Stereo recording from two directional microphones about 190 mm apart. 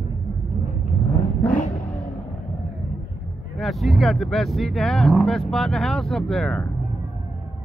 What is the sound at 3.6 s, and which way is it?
Speech, centre (ahead or behind).